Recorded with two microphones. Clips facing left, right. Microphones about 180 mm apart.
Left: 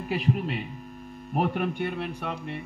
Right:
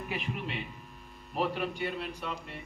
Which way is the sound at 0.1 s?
35° left (ahead or behind).